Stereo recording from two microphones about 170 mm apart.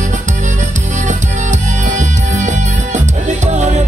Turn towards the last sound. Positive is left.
turn(degrees=-45)  # may be behind; listen again after turning